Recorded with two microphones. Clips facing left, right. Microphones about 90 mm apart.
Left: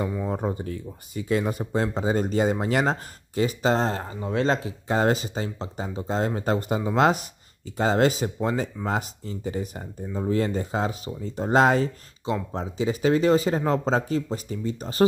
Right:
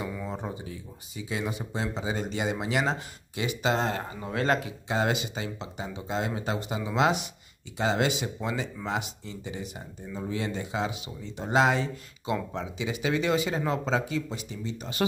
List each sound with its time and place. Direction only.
0.3 s speech: 45° left (ahead or behind); by 4.7 s 30° left (ahead or behind)
4.8 s speech: 40° left (ahead or behind)